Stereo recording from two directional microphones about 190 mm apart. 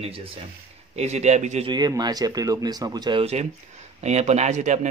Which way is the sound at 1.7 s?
20° right (ahead or behind).